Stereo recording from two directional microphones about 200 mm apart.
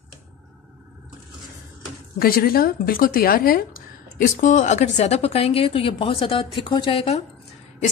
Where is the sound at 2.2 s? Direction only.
50° left (ahead or behind); by 7.2 s 30° left (ahead or behind).